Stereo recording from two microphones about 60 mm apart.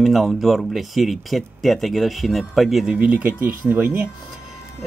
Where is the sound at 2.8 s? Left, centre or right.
Right.